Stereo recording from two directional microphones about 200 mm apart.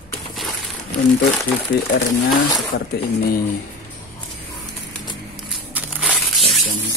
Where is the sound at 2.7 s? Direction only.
50° left (ahead or behind).